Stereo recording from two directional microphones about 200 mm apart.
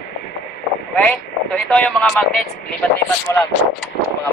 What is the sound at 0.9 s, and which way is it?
A man's voice, 5° left (ahead or behind).